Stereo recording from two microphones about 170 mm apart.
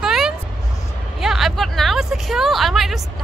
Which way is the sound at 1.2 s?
Centre (ahead or behind).